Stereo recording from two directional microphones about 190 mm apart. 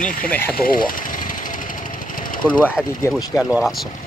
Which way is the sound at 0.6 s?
45° left (ahead or behind).